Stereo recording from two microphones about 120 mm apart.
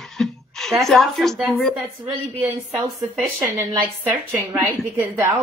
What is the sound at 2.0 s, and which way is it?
Speech, 25° right (ahead or behind).